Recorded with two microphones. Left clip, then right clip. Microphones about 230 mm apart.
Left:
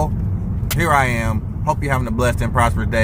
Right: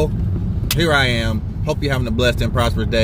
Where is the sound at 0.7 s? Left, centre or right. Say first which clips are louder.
Even; centre.